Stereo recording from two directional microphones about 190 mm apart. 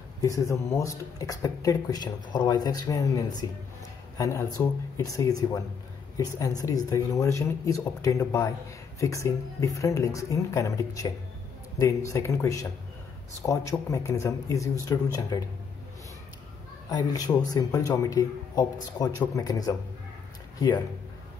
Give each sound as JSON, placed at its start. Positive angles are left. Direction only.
{"t": 0.2, "sound": "speech", "side_deg": 15}
{"t": 6.6, "sound": "speech", "side_deg": 20}
{"t": 16.9, "sound": "speech", "side_deg": 20}